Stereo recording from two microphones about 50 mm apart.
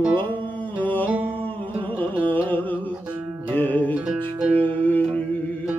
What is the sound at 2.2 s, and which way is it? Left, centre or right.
Music, left.